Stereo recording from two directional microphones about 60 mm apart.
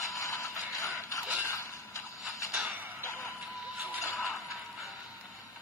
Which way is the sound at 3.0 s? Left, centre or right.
Left.